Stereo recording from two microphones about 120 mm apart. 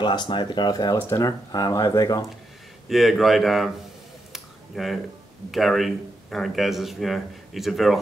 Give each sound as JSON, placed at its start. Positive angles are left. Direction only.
{"t": 0.0, "sound": "speech", "side_deg": 40}
{"t": 2.9, "sound": "speech", "side_deg": 0}
{"t": 4.3, "sound": "a sound", "side_deg": 0}
{"t": 5.5, "sound": "speech", "side_deg": 0}